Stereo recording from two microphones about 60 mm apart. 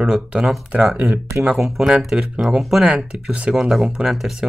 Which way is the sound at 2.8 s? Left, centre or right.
Centre.